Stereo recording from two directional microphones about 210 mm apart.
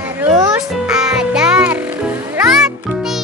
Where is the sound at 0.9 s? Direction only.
5° right (ahead or behind).